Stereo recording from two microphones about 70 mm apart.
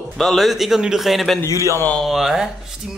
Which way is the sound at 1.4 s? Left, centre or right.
Left.